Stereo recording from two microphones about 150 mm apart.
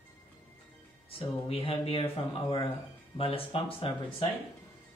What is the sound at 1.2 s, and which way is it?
Speech, 40° left (ahead or behind).